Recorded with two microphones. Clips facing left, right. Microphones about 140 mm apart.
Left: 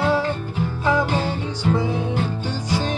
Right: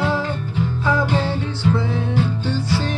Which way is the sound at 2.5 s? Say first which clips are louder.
Right 2 dB; 15° left (ahead or behind).